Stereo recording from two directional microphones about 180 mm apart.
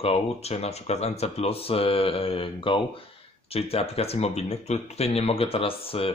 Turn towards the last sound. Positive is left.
turn(degrees=30)  # may be behind; listen again after turning